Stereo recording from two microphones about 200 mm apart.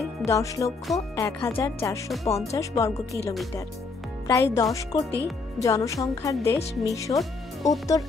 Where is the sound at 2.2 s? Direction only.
30° left (ahead or behind).